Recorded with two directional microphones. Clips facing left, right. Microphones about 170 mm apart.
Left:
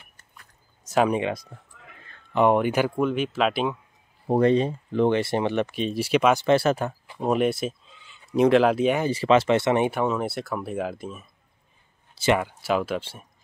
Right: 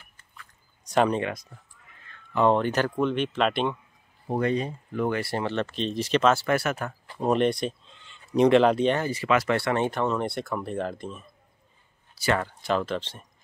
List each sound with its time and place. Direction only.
0.8 s speech: 5° left (ahead or behind)
1.2 s speech: 30° left (ahead or behind)
2.3 s speech: 15° left (ahead or behind)
4.3 s speech: 30° left (ahead or behind); by 6.4 s 10° left (ahead or behind)
6.4 s speech: 30° left (ahead or behind)
7.1 s speech: 5° left (ahead or behind)
9.0 s speech: 30° left (ahead or behind)
9.8 s speech: 10° left (ahead or behind)
12.4 s speech: 10° left (ahead or behind)